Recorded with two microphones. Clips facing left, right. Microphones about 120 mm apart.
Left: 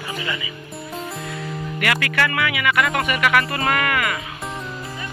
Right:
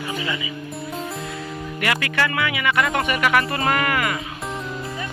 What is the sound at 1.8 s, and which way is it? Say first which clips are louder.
Speech: left 1 dB; 25° right (ahead or behind).